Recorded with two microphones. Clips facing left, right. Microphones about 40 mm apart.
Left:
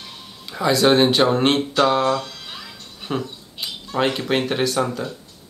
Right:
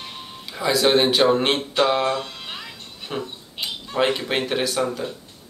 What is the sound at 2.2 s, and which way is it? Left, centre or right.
Music, right.